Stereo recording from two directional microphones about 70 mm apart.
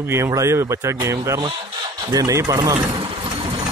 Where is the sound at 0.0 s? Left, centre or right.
Right.